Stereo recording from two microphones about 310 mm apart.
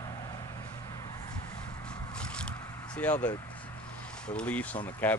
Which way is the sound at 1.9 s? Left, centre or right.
Centre.